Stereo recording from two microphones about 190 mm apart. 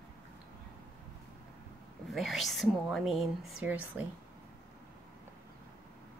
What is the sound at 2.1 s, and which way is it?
A woman's voice, centre (ahead or behind).